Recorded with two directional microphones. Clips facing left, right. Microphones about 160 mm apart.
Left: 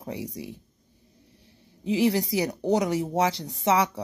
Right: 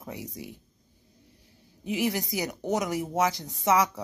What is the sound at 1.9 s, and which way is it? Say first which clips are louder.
Speech: left 5 dB; 30° left (ahead or behind).